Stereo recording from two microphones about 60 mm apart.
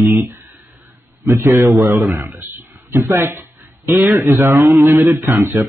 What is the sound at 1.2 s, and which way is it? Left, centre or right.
A man's voice, right.